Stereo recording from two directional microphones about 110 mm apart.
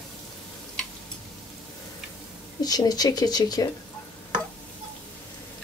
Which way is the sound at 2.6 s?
35° left (ahead or behind).